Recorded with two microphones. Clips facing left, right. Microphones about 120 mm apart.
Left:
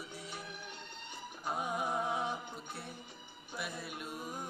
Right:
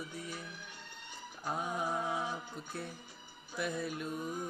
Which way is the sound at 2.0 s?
20° left (ahead or behind).